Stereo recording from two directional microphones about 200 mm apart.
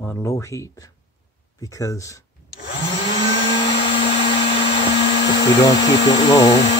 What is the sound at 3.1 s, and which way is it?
Vehicle, 25° left (ahead or behind).